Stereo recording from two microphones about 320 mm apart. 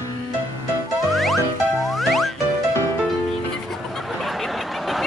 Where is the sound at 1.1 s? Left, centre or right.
Centre.